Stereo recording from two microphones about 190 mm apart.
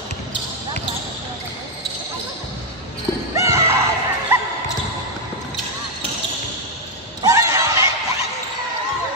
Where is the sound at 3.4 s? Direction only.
15° right (ahead or behind).